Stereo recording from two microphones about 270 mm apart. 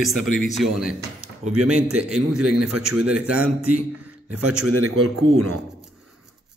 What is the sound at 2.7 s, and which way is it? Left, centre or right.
Speech, right.